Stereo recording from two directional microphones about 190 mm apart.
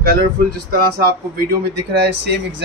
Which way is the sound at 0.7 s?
55° right (ahead or behind).